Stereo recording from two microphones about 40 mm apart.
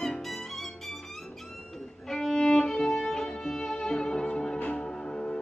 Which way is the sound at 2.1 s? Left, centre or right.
Centre.